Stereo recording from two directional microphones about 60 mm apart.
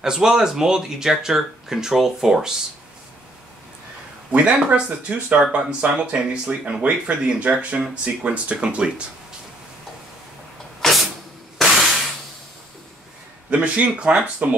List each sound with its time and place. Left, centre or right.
0.0 s speech: centre
4.3 s speech: right
10.8 s vehicle: centre
13.5 s speech: right